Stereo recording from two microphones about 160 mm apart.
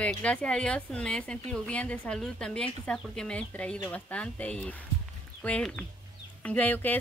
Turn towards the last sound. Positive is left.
turn(degrees=10)  # may be behind; listen again after turning